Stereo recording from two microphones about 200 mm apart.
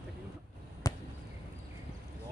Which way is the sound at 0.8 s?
15° left (ahead or behind).